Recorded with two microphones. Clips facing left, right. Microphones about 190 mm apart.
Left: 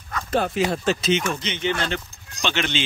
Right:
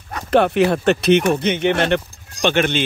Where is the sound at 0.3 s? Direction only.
65° right (ahead or behind).